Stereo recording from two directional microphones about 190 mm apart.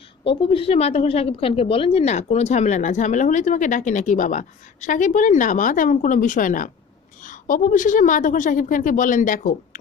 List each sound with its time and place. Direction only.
0.2 s a woman's voice: 30° left (ahead or behind); by 9.8 s 45° left (ahead or behind)